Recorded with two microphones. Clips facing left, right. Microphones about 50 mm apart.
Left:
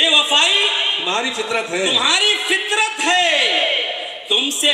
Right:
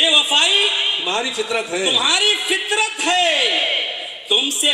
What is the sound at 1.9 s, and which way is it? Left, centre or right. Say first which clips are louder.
Speech: left 1 dB; left.